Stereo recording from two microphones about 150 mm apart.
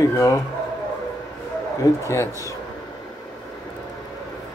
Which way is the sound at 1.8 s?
20° left (ahead or behind).